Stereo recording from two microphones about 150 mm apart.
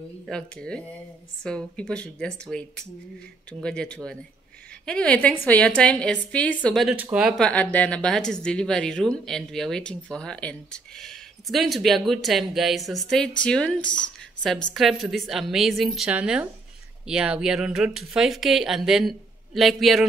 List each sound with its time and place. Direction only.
0.3 s a woman's voice: 5° left (ahead or behind)
7.0 s speech: 10° right (ahead or behind)
7.3 s speech: 10° left (ahead or behind)